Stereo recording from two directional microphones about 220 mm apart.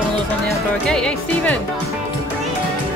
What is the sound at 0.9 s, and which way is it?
Speech, 5° left (ahead or behind).